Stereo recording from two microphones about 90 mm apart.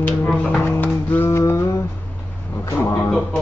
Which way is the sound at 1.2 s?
30° left (ahead or behind).